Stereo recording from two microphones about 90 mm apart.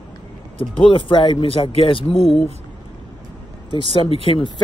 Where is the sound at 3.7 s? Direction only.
75° left (ahead or behind).